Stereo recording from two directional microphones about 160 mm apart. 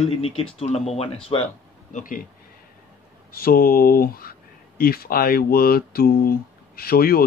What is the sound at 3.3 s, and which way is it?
Speech, 70° left (ahead or behind).